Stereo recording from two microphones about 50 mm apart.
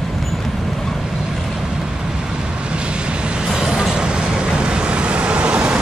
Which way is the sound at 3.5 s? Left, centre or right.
Centre.